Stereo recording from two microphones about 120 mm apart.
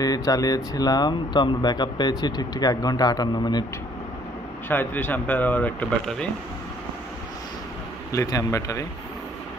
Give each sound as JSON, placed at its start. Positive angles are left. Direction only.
{"t": 0.0, "sound": "speech", "side_deg": 30}
{"t": 4.6, "sound": "speech", "side_deg": 15}
{"t": 8.1, "sound": "a man's voice", "side_deg": 25}